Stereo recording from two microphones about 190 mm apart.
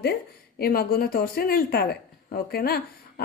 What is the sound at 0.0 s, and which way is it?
A woman's voice, 55° left (ahead or behind).